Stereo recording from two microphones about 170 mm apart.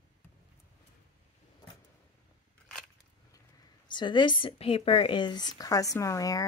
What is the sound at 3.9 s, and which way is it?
Speech, 25° left (ahead or behind).